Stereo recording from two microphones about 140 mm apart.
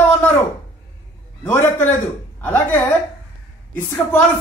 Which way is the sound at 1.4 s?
15° left (ahead or behind).